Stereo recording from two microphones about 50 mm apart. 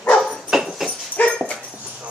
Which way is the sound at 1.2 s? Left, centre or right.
Left.